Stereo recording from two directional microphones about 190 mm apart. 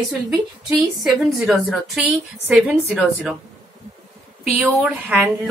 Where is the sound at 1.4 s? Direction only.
Centre (ahead or behind).